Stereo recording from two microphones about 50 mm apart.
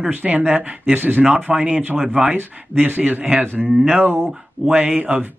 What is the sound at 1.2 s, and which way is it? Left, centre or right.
Speech, right.